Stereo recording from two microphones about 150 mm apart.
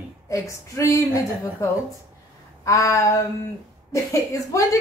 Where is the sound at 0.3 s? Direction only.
20° left (ahead or behind).